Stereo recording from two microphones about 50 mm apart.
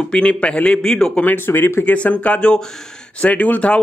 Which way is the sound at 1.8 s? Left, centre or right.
Left.